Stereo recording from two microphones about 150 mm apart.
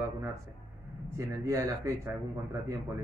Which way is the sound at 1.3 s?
20° right (ahead or behind).